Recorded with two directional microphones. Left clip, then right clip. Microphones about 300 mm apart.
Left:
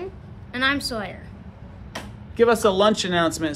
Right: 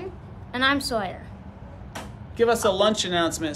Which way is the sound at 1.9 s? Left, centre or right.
Centre.